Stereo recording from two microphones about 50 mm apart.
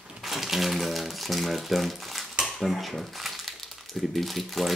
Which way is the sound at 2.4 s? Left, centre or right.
Centre.